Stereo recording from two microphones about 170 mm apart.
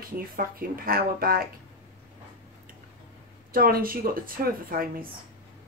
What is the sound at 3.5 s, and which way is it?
Speech, 60° right (ahead or behind).